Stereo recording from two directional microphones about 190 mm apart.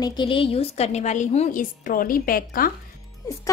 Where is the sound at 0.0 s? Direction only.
25° left (ahead or behind); by 2.7 s 50° left (ahead or behind).